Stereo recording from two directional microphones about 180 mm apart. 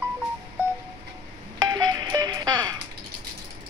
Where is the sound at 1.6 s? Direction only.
20° right (ahead or behind).